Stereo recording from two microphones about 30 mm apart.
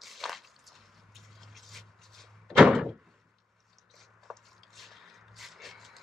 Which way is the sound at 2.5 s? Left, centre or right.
Centre.